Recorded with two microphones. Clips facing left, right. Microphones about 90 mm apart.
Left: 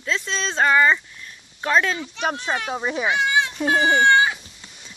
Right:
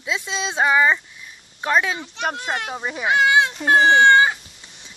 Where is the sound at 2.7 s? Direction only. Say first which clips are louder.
Left 3 dB; 10° left (ahead or behind).